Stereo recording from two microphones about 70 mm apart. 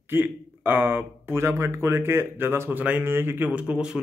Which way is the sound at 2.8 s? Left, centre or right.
Right.